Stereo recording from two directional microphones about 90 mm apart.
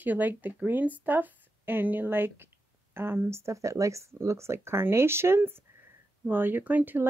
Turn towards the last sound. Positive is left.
turn(degrees=-20)  # may be behind; listen again after turning